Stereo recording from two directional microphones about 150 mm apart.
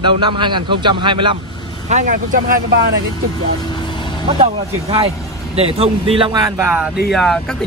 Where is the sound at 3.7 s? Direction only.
30° left (ahead or behind).